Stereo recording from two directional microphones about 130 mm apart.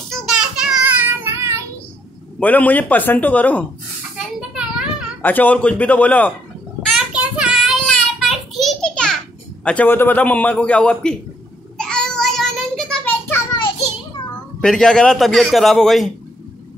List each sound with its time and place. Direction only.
0.1 s child singing: 5° right (ahead or behind)
2.4 s a man's voice: 10° left (ahead or behind)
4.2 s a sound: 5° right (ahead or behind)
5.2 s a man's voice: 15° left (ahead or behind)
7.1 s child singing: 5° right (ahead or behind)
9.7 s a man's voice: 15° left (ahead or behind)
11.8 s child singing: 5° left (ahead or behind)
14.6 s a man's voice: 5° left (ahead or behind)